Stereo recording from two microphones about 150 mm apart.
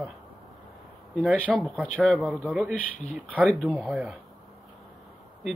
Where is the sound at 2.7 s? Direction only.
10° left (ahead or behind).